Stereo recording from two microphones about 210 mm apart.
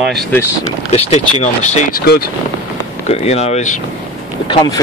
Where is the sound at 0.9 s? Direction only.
30° left (ahead or behind).